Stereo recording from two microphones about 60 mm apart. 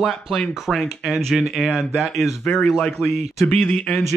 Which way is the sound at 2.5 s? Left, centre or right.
Centre.